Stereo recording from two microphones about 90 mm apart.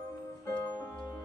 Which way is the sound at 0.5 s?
20° left (ahead or behind).